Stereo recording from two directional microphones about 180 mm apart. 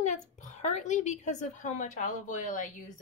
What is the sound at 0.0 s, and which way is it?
Speech, 45° left (ahead or behind).